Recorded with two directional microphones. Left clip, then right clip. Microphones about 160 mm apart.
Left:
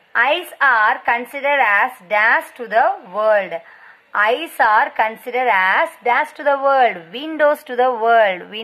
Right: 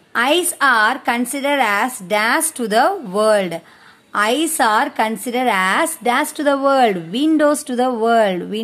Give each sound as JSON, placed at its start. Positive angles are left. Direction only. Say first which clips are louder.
{"t": 0.1, "sound": "a woman's voice", "louder": "even", "side_deg": -35}